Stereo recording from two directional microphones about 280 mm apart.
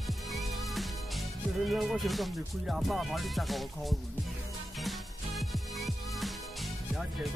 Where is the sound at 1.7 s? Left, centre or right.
Centre.